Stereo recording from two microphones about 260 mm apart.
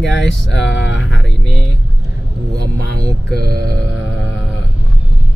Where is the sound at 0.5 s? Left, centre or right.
Left.